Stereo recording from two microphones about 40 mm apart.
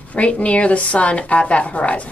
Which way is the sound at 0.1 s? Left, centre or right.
Left.